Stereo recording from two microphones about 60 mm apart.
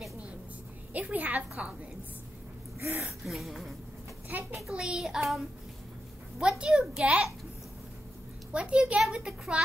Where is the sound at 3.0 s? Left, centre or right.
Centre.